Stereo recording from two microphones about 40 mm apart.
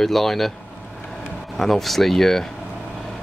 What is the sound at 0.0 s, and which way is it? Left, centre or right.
Speech, centre.